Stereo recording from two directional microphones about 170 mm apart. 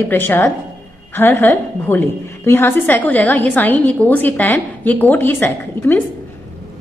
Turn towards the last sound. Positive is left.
turn(degrees=15)  # may be behind; listen again after turning